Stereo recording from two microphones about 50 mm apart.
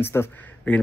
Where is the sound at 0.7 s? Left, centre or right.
Left.